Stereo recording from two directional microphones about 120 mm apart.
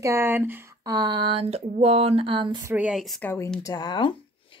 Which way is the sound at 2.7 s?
5° right (ahead or behind).